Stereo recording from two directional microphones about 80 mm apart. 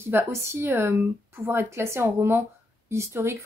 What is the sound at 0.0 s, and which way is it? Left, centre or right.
Speech, right.